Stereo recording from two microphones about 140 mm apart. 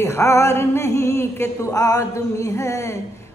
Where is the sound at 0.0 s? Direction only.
20° left (ahead or behind).